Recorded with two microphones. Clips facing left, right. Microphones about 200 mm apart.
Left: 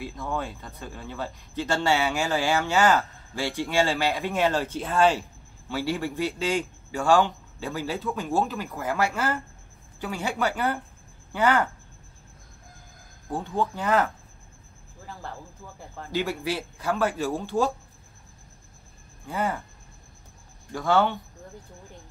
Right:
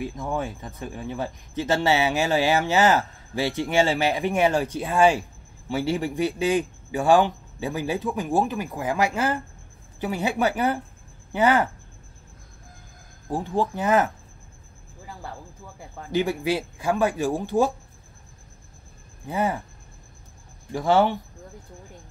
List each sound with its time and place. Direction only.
0.1 s speech: 15° right (ahead or behind)
13.7 s speech: 20° right (ahead or behind)
16.2 s speech: 15° right (ahead or behind)
19.2 s speech: 20° right (ahead or behind)
20.7 s speech: 20° right (ahead or behind)